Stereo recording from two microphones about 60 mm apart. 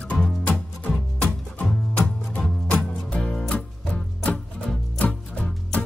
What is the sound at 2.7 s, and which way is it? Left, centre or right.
Music, centre.